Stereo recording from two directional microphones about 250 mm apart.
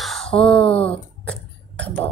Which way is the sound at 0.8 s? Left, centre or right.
Centre.